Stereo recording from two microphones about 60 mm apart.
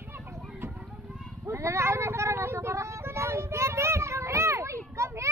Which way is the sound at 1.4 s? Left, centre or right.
Right.